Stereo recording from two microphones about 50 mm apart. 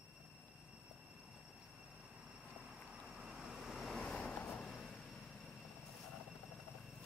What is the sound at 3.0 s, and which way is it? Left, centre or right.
Vehicle, centre.